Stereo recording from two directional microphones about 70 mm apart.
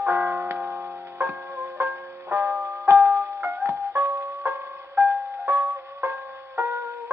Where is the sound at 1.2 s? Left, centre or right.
Right.